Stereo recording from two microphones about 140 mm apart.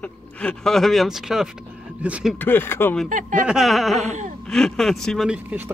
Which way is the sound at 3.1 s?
70° right (ahead or behind).